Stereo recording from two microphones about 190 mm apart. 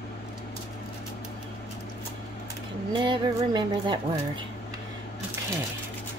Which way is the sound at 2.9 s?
25° right (ahead or behind).